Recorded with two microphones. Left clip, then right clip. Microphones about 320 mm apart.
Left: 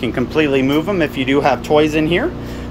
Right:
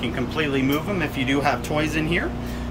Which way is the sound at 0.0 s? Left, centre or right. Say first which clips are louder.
Left 8 dB; centre.